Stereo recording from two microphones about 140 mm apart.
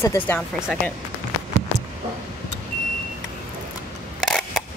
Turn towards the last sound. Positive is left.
turn(degrees=5)  # may be behind; listen again after turning